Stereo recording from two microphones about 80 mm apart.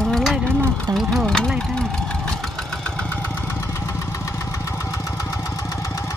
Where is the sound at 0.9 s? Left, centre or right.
Right.